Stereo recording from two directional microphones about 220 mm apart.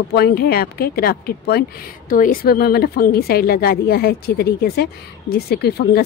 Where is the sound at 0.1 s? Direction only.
45° left (ahead or behind).